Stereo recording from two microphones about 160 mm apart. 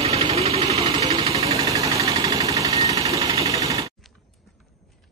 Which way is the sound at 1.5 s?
20° right (ahead or behind).